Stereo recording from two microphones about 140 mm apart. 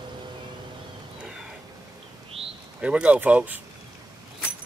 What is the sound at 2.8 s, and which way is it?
Speech, 10° right (ahead or behind).